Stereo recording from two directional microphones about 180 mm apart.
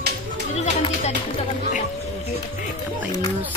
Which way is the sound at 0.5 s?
35° left (ahead or behind).